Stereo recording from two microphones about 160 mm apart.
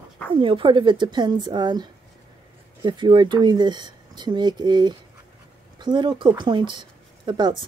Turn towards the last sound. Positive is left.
turn(degrees=-30)  # may be behind; listen again after turning